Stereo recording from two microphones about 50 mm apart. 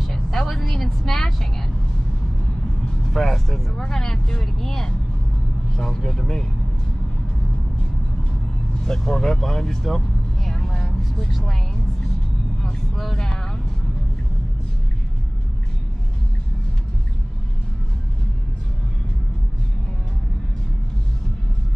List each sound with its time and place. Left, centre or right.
0.0 s vehicle: centre
3.1 s speech: centre
8.8 s vehicle: centre
12.6 s speech: centre